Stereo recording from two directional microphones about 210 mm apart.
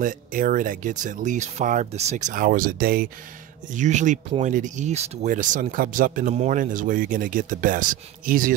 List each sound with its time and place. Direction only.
0.0 s speech: 40° right (ahead or behind)